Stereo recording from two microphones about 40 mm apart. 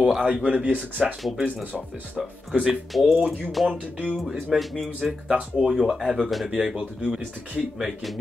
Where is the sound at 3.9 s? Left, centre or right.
Right.